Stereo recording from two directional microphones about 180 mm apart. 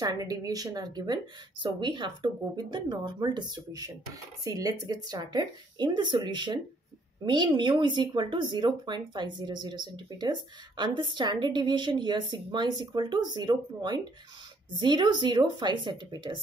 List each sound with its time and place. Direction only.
0.0 s speech: 20° right (ahead or behind)